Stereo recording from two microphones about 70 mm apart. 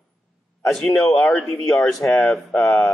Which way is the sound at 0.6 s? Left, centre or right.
Centre.